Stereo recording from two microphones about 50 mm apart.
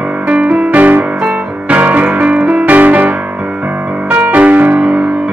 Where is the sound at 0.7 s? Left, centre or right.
Right.